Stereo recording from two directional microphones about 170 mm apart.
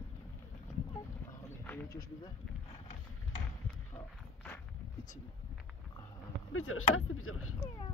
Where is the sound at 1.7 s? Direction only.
15° left (ahead or behind).